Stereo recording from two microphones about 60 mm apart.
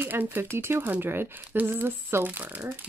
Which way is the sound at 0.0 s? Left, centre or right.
Right.